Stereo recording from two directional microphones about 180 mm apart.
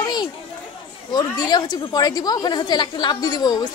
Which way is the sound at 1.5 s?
25° left (ahead or behind).